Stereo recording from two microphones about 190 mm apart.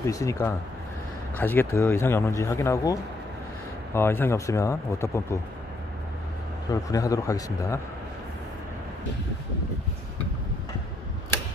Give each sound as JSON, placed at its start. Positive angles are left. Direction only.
{"t": 0.0, "sound": "speech", "side_deg": 15}
{"t": 6.7, "sound": "speech", "side_deg": 20}